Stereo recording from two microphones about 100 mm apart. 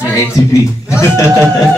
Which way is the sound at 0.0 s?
30° left (ahead or behind).